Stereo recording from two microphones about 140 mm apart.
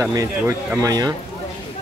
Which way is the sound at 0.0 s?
20° right (ahead or behind).